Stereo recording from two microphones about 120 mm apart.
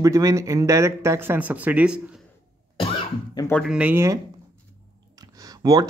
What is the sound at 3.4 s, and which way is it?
Speech, 35° left (ahead or behind).